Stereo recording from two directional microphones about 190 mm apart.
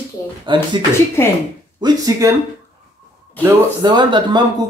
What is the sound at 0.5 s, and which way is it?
Speech, 25° right (ahead or behind).